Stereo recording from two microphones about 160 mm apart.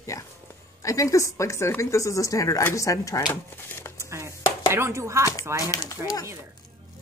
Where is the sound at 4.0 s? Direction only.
20° right (ahead or behind).